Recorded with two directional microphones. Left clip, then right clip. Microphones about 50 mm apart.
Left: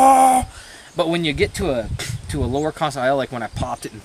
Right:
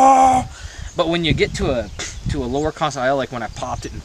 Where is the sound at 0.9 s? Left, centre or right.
Centre.